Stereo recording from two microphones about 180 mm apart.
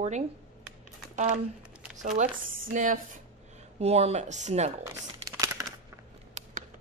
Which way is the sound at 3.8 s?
35° right (ahead or behind).